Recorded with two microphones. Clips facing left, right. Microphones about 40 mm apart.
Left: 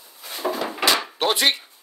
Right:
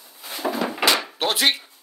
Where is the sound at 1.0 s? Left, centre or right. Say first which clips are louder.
Left 1 dB; centre.